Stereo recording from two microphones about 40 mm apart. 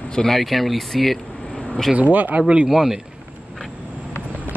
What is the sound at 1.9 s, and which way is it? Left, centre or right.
Speech, right.